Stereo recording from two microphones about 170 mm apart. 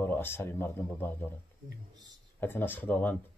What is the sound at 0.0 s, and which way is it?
Speech, 15° left (ahead or behind).